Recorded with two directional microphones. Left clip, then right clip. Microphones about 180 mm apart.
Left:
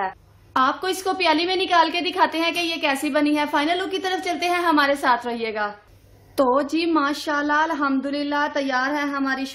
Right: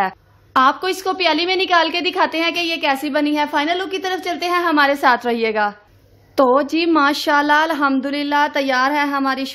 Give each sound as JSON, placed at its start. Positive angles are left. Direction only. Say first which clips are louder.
{"t": 0.6, "sound": "a woman's voice", "louder": "right 5 dB", "side_deg": -35}
{"t": 6.3, "sound": "a woman's voice", "louder": "right 5 dB", "side_deg": -30}